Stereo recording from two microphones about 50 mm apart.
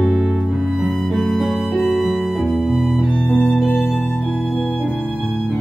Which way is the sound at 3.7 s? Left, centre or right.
Centre.